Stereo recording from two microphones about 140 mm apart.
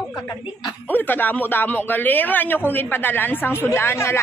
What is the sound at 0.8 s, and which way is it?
A man's voice, 15° left (ahead or behind).